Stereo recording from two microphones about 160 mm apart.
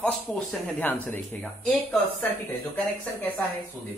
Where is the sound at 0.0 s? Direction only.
5° left (ahead or behind).